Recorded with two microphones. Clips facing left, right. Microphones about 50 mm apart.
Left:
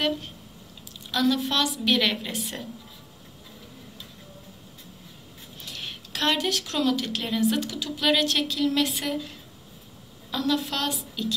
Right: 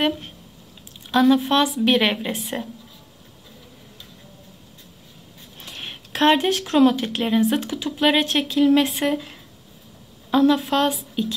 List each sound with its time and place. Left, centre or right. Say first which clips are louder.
1.1 s speech: right 7 dB; right
5.6 s speech: right 2 dB; right